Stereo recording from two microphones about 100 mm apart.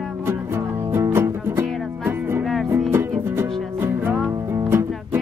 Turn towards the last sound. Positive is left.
turn(degrees=-20)  # may be behind; listen again after turning